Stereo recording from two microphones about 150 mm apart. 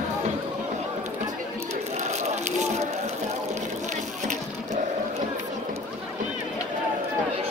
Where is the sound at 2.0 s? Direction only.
50° right (ahead or behind).